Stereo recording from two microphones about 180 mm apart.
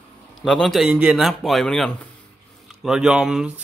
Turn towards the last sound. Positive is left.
turn(degrees=-5)  # may be behind; listen again after turning